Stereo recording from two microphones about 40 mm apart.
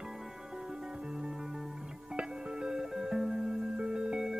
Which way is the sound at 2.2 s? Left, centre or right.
Right.